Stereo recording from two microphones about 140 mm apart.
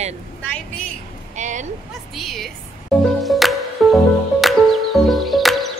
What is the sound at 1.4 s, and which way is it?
Speech, 60° right (ahead or behind).